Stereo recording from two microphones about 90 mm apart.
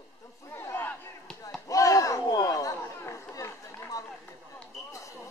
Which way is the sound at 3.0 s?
30° left (ahead or behind).